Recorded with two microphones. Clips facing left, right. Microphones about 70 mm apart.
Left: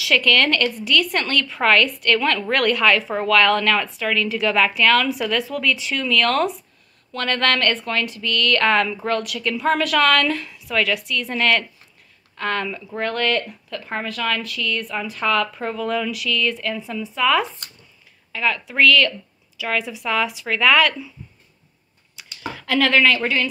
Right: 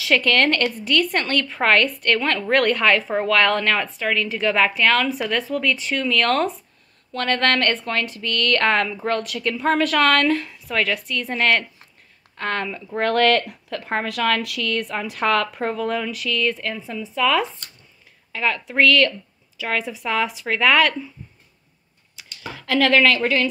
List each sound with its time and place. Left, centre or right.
0.0 s a woman's voice: right
13.0 s speech: right
17.1 s speech: left
18.3 s a woman's voice: right
22.7 s a woman's voice: right
23.0 s speech: left